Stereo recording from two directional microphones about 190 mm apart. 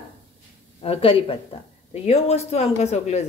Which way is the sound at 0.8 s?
30° left (ahead or behind).